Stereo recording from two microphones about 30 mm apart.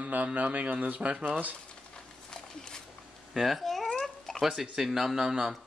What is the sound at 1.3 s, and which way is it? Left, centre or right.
Speech, right.